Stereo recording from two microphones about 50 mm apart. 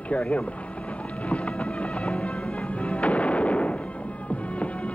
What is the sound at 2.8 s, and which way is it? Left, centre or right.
Artillery fire, left.